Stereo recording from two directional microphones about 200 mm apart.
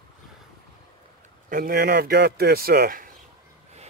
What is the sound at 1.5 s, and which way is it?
A man's voice, 45° right (ahead or behind).